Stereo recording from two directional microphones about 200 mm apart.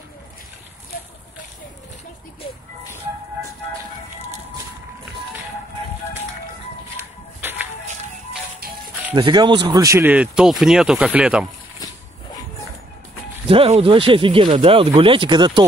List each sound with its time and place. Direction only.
9.1 s speech: 25° right (ahead or behind); by 11.4 s 5° right (ahead or behind)
13.5 s speech: 30° right (ahead or behind)